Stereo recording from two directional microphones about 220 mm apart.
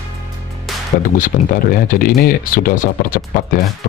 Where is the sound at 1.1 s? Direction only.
35° left (ahead or behind).